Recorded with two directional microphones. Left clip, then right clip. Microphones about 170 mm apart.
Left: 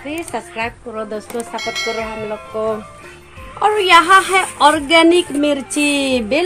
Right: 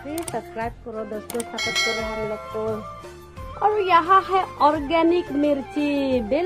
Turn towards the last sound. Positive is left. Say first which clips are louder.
# left 6 dB
turn(degrees=0)  # may be behind; listen again after turning